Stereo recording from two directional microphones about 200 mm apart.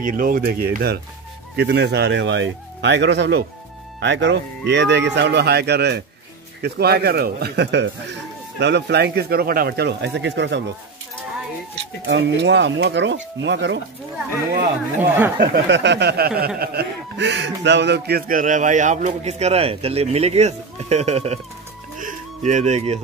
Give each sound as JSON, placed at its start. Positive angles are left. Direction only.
{"t": 0.0, "sound": "speech", "side_deg": -45}
{"t": 12.1, "sound": "speech", "side_deg": -60}
{"t": 15.0, "sound": "speech", "side_deg": -10}
{"t": 15.3, "sound": "a man's voice", "side_deg": -55}
{"t": 21.9, "sound": "music", "side_deg": -40}